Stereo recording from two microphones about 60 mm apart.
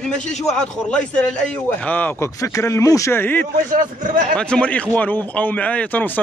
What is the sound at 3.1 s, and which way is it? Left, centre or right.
Speech, left.